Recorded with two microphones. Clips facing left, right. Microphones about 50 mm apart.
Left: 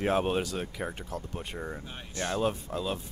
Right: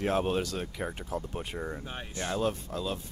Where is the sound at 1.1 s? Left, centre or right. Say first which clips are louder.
Right 2 dB; centre.